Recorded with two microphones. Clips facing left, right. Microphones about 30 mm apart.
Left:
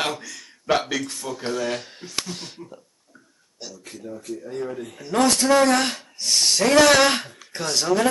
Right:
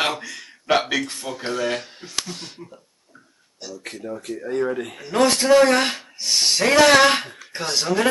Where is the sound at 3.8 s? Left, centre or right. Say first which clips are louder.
Right 5 dB; right.